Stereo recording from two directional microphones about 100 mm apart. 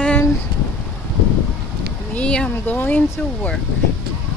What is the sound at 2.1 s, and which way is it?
Speech, 10° left (ahead or behind).